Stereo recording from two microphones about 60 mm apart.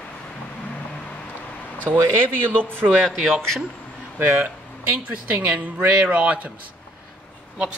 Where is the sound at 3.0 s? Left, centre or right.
Centre.